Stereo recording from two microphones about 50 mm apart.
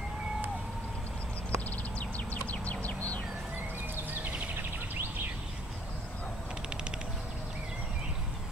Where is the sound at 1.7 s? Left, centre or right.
Left.